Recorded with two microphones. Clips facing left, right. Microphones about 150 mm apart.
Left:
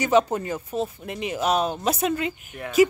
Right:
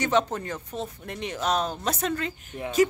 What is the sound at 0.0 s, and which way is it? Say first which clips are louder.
Speech: left 4 dB; 10° left (ahead or behind).